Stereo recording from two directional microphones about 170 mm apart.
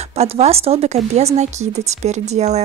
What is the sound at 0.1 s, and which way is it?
A woman's voice, 40° right (ahead or behind).